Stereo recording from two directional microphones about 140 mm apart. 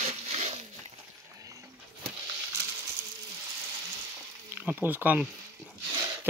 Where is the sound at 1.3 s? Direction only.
25° right (ahead or behind).